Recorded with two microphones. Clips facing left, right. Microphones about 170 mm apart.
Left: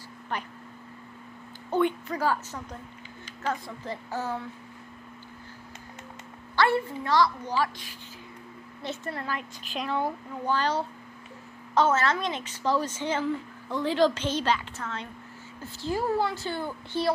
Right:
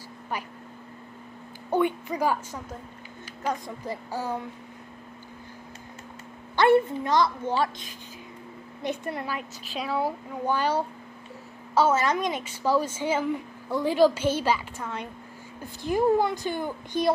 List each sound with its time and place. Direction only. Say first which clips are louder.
1.7 s a woman's voice: right 1 dB; 10° right (ahead or behind)
6.5 s a woman's voice: right 5 dB; 20° right (ahead or behind)